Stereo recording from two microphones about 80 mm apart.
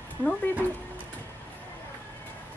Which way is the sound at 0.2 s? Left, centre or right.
Centre.